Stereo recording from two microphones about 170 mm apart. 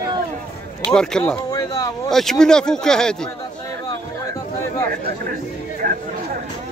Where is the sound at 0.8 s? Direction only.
5° left (ahead or behind).